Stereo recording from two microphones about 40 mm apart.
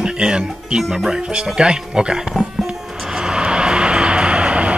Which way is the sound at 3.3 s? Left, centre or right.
Right.